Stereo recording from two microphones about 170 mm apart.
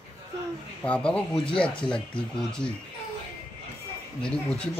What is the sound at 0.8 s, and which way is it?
Speech, 5° left (ahead or behind).